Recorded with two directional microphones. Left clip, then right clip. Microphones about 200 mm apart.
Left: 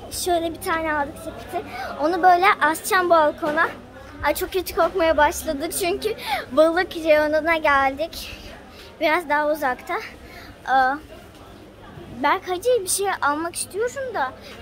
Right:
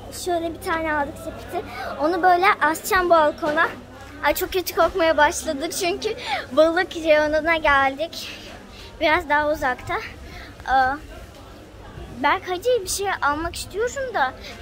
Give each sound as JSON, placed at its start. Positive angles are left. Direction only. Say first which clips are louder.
{"t": 0.1, "sound": "a woman's voice", "louder": "left 2 dB", "side_deg": 30}
{"t": 0.7, "sound": "a woman's voice", "louder": "right 2 dB", "side_deg": 5}
{"t": 12.2, "sound": "a woman's voice", "louder": "even", "side_deg": 10}